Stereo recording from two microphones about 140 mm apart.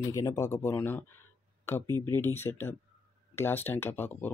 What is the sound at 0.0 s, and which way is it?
Speech, 20° left (ahead or behind).